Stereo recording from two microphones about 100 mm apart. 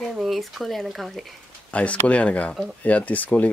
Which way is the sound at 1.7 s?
15° left (ahead or behind).